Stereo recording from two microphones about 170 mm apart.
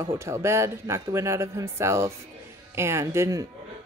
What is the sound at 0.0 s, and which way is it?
Speech, 15° right (ahead or behind).